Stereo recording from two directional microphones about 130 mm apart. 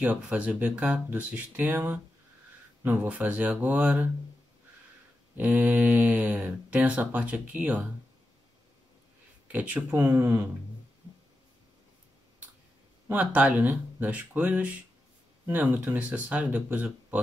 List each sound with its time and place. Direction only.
0.0 s speech: 10° right (ahead or behind)
5.4 s speech: 10° right (ahead or behind)
9.5 s speech: 10° right (ahead or behind)
13.1 s speech: 10° right (ahead or behind)